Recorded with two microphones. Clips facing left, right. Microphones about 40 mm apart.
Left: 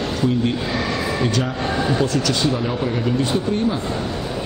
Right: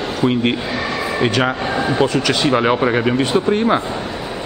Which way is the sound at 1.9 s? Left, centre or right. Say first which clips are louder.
Right 4 dB; right.